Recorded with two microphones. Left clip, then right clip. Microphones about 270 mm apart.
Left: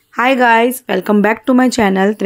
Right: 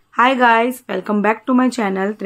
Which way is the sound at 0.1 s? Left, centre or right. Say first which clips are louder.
Left 2 dB; centre.